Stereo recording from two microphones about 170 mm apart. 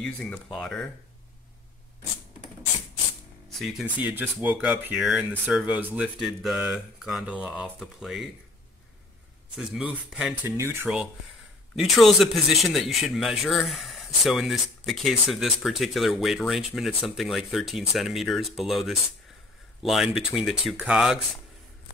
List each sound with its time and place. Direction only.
0.0 s a man's voice: 5° left (ahead or behind)
3.5 s speech: centre (ahead or behind)
4.0 s a man's voice: 10° right (ahead or behind)
9.6 s a man's voice: 5° right (ahead or behind)
10.6 s speech: 15° right (ahead or behind)
11.7 s a man's voice: centre (ahead or behind)